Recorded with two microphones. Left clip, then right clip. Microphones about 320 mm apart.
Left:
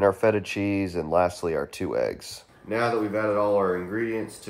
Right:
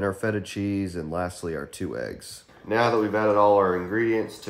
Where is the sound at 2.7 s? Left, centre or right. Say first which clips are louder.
Right 3 dB; centre.